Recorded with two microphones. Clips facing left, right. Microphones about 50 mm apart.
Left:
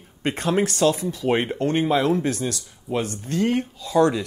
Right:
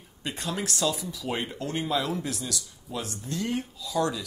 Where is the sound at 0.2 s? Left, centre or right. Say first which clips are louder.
Left 10 dB; left.